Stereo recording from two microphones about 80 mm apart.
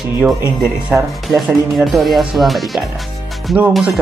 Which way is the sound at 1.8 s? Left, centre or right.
Centre.